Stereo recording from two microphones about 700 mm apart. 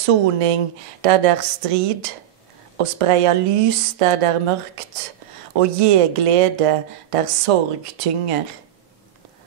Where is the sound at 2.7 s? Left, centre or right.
Right.